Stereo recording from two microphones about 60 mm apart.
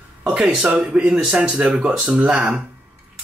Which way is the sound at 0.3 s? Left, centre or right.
Centre.